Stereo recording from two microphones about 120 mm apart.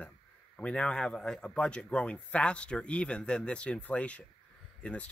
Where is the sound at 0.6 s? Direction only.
10° left (ahead or behind).